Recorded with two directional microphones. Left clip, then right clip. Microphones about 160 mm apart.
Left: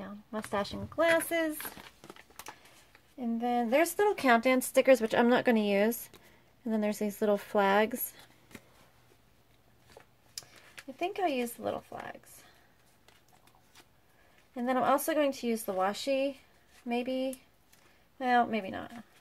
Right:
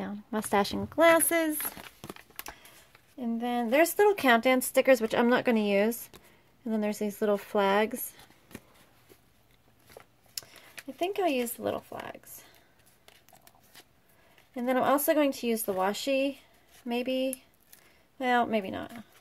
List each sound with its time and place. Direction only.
0.0 s speech: 65° right (ahead or behind)
3.2 s a woman's voice: 20° right (ahead or behind); by 8.3 s centre (ahead or behind)
11.0 s a woman's voice: 35° right (ahead or behind)
14.5 s a woman's voice: 35° right (ahead or behind)